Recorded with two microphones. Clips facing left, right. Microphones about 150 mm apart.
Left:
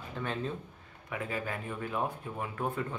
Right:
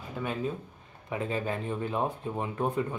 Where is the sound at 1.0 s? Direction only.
25° right (ahead or behind).